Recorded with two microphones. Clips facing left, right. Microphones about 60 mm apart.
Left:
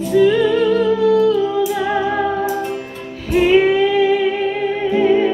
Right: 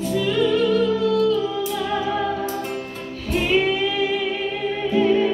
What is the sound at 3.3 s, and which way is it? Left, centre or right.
Music, left.